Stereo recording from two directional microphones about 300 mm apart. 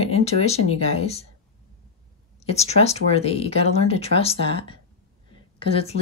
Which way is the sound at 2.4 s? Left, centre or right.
Left.